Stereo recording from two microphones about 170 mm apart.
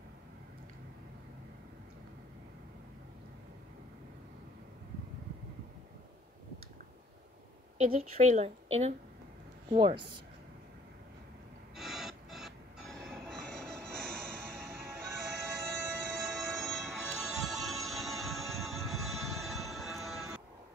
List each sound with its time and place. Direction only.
7.7 s a woman's voice: 40° right (ahead or behind)
11.7 s a sound: centre (ahead or behind)
15.2 s music: 5° right (ahead or behind)